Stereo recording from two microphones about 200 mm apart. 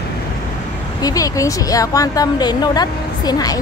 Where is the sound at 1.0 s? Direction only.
15° left (ahead or behind).